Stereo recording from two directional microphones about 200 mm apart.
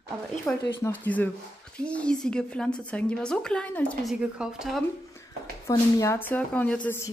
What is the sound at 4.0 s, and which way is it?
Speech, 5° right (ahead or behind).